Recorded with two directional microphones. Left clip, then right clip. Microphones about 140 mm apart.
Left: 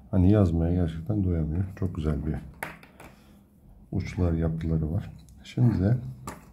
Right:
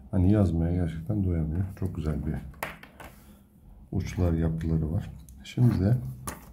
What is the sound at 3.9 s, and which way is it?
Speech, 15° left (ahead or behind).